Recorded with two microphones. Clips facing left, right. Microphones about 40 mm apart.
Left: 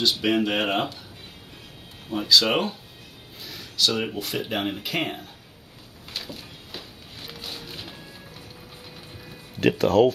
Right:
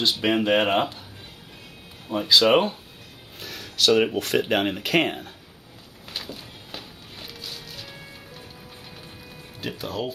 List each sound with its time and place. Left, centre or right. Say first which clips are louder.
0.0 s speech: even; centre
2.0 s speech: right 2 dB; centre
3.3 s speech: right 1 dB; right
6.1 s a sound: even; centre
7.6 s music: left 2 dB; left
9.6 s speech: left 12 dB; left